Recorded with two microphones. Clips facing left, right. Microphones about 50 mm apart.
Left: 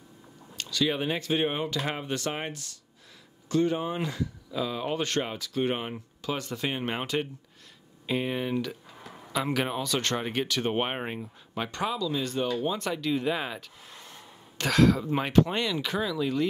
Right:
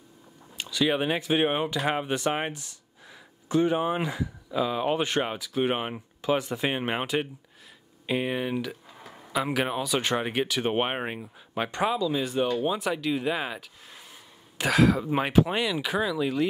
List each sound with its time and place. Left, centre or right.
0.6 s speech: centre